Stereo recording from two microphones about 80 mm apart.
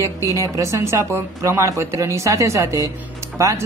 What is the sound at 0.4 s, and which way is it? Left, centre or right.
Speech, right.